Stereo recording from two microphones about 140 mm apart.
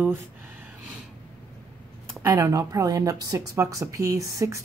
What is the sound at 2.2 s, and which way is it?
A woman's voice, 20° right (ahead or behind).